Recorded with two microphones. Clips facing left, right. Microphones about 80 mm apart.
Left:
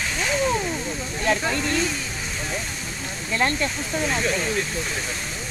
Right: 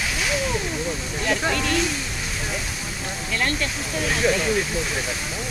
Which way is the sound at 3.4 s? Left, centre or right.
Left.